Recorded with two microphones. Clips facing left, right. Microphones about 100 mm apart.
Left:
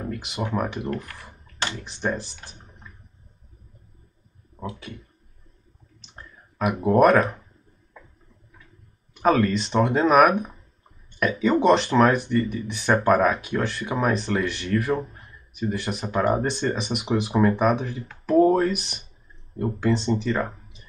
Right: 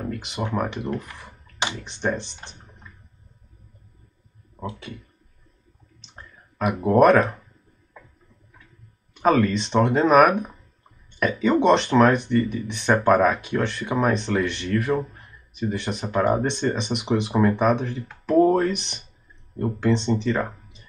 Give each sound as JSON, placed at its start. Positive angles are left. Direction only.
{"t": 0.0, "sound": "speech", "side_deg": 0}
{"t": 5.9, "sound": "clicking", "side_deg": 0}
{"t": 9.1, "sound": "speech", "side_deg": 0}